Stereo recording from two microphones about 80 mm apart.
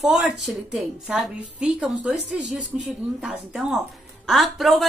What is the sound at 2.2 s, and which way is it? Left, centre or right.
Speech, centre.